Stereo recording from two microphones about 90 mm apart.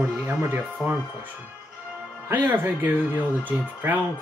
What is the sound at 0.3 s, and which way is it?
Speech, 25° right (ahead or behind).